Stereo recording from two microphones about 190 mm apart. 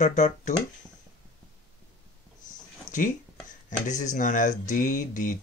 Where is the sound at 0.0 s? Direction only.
40° left (ahead or behind).